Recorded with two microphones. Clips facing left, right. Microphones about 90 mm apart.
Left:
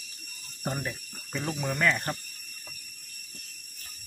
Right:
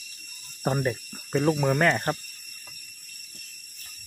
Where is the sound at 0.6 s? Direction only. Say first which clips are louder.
Right 7 dB; 45° right (ahead or behind).